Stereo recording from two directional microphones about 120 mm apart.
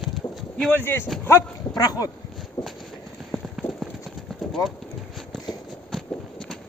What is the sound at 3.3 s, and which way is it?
Clip-clop, centre (ahead or behind).